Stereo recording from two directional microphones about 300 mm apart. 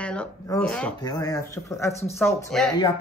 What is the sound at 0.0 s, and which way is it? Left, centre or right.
Speech, centre.